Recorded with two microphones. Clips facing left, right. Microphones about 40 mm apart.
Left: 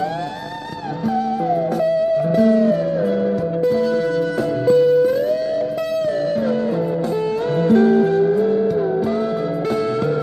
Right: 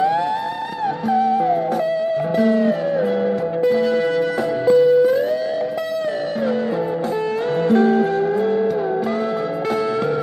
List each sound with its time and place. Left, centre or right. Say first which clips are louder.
2.3 s music: left 1 dB; right
4.6 s music: right 1 dB; centre
7.6 s music: left 2 dB; right